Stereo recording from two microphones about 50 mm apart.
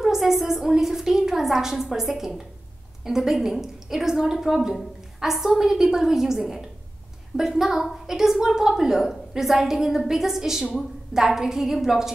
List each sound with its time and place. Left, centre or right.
0.0 s a woman's voice: centre